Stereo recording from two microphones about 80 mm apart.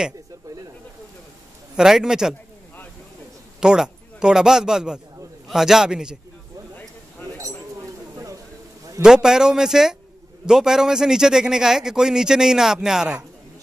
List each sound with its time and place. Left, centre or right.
1.8 s a man's voice: centre
3.6 s a man's voice: centre
7.3 s a sound: right
9.0 s a man's voice: centre